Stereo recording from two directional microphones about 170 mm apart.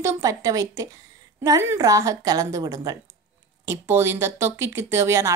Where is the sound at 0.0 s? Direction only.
20° right (ahead or behind).